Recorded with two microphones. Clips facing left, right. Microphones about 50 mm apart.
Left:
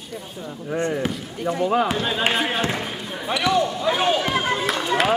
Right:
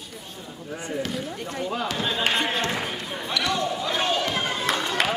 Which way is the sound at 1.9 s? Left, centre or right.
Centre.